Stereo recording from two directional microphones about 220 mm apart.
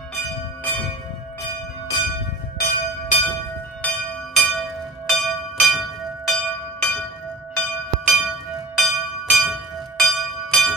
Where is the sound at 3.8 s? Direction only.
5° left (ahead or behind).